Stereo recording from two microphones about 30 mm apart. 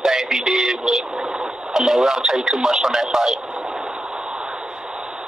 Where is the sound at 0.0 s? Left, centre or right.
Centre.